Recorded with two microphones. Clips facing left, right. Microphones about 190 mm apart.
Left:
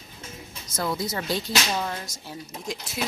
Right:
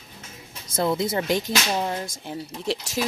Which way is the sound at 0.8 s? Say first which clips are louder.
Right 5 dB; 25° right (ahead or behind).